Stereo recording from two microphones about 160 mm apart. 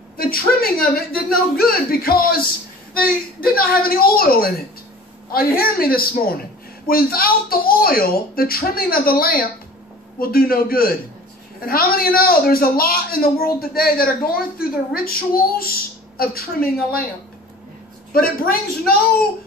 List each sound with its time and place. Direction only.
0.2 s a man's voice: 70° left (ahead or behind)
18.1 s a woman's voice: 65° left (ahead or behind)